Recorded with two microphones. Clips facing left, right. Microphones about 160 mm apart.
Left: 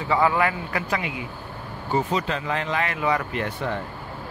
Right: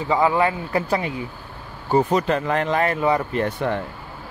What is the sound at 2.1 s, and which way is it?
A man's voice, 50° right (ahead or behind).